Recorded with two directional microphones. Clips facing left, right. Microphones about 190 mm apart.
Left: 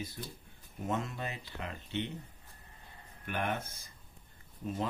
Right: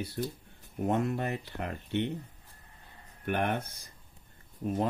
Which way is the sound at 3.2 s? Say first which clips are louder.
Right 5 dB; 55° right (ahead or behind).